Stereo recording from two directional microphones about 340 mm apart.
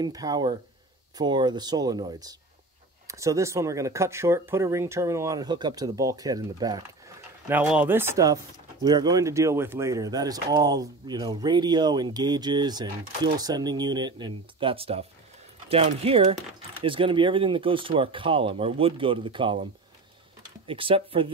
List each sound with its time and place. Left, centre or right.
0.0 s speech: centre
20.6 s speech: centre